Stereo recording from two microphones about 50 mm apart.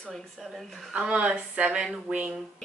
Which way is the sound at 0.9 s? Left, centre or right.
Right.